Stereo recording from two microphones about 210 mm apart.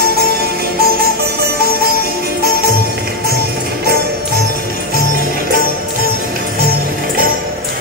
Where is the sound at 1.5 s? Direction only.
45° right (ahead or behind).